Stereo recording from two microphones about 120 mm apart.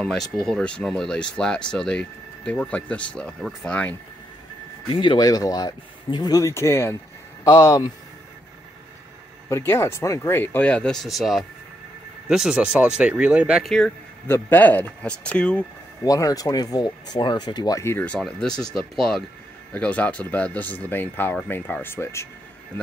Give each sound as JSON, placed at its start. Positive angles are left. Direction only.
{"t": 0.0, "sound": "speech", "side_deg": 5}
{"t": 4.8, "sound": "speech", "side_deg": 40}
{"t": 9.5, "sound": "speech", "side_deg": 20}
{"t": 14.2, "sound": "speech", "side_deg": 15}
{"t": 16.0, "sound": "speech", "side_deg": 30}
{"t": 18.0, "sound": "speech", "side_deg": 5}